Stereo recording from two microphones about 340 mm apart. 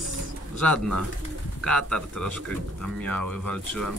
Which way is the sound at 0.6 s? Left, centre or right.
Centre.